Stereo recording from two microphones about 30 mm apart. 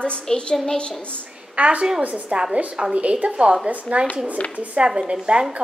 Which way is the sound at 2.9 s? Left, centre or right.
Right.